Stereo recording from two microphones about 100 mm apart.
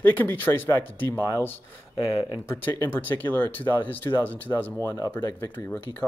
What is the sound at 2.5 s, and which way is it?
Speech, 25° left (ahead or behind).